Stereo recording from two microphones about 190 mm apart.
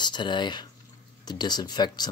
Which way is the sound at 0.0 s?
25° left (ahead or behind).